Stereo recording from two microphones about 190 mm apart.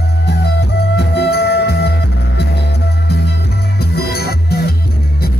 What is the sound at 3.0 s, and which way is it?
Music, 60° left (ahead or behind).